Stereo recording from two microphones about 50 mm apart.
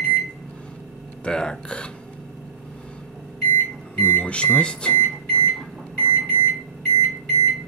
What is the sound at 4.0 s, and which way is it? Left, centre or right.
Speech, left.